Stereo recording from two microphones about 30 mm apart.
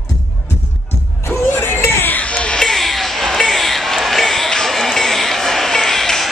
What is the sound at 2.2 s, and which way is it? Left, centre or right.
Music, left.